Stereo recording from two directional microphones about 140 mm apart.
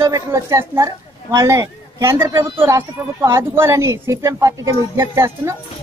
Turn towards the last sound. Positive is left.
turn(degrees=-20)  # may be behind; listen again after turning